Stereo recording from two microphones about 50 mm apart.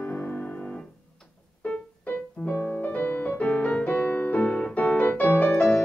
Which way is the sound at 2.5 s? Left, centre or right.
Left.